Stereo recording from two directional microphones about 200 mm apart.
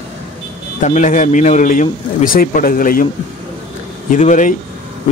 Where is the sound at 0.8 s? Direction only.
35° left (ahead or behind).